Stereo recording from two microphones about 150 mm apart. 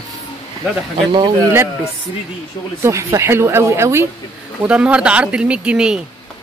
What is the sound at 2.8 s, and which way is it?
Speech, 20° right (ahead or behind).